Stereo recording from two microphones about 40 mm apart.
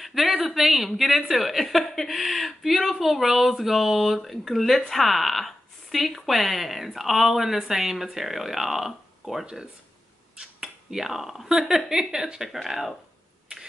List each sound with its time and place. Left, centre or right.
0.0 s a sound: centre
0.6 s a woman's voice: centre
9.2 s speech: centre
10.4 s finger snapping: centre
11.4 s speech: centre